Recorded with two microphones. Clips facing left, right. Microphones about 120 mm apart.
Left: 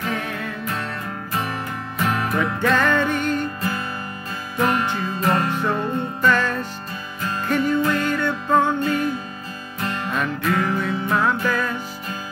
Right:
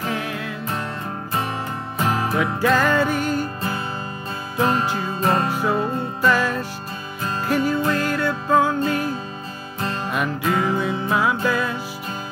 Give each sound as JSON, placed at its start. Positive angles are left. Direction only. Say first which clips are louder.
{"t": 0.0, "sound": "music", "louder": "even", "side_deg": -5}
{"t": 2.0, "sound": "music", "louder": "right 1 dB", "side_deg": -30}
{"t": 2.3, "sound": "music", "louder": "right 1 dB", "side_deg": -5}
{"t": 4.6, "sound": "music", "louder": "even", "side_deg": -30}
{"t": 5.5, "sound": "music", "louder": "right 1 dB", "side_deg": -5}